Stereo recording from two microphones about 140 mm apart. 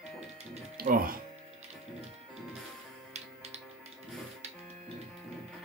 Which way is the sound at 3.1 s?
50° right (ahead or behind).